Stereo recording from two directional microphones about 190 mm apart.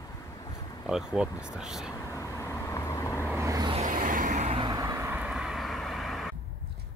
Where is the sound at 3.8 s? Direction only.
45° right (ahead or behind).